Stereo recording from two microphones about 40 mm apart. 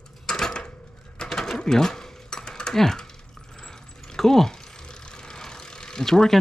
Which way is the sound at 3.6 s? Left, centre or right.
Centre.